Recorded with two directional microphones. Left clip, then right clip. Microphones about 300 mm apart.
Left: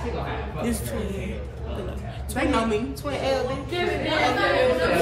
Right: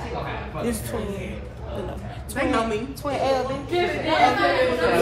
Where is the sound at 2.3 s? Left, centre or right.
Centre.